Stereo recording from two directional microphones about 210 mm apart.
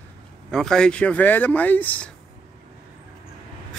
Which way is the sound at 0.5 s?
Centre (ahead or behind).